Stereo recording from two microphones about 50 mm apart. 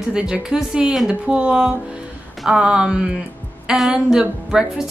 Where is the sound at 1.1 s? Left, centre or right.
Right.